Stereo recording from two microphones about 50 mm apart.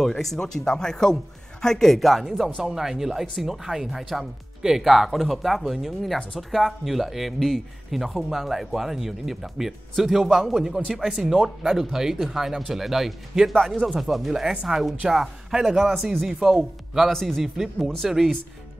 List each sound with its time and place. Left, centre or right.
0.0 s speech: centre
17.1 s speech: centre
17.4 s speech: centre